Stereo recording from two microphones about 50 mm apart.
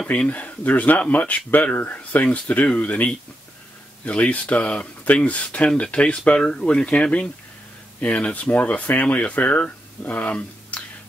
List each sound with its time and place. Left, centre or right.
0.1 s speech: left